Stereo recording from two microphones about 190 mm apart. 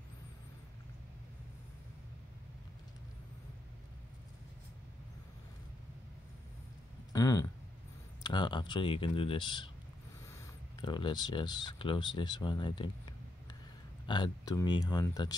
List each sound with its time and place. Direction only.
7.1 s a sound: 15° left (ahead or behind)
8.2 s speech: 25° left (ahead or behind)
14.0 s speech: 25° left (ahead or behind)